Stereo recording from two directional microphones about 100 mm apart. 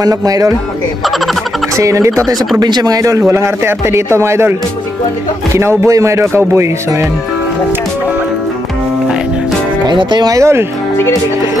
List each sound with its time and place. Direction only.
0.0 s speech: 35° right (ahead or behind)
1.8 s speech: 30° right (ahead or behind)
2.6 s a man's voice: 40° right (ahead or behind)
9.8 s speech: 45° right (ahead or behind); by 10.6 s 30° right (ahead or behind)